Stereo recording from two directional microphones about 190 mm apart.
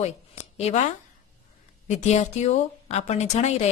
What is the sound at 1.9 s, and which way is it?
A woman's voice, 35° left (ahead or behind).